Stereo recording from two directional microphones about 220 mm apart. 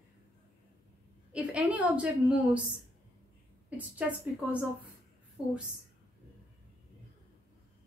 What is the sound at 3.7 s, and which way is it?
Speech, 5° right (ahead or behind).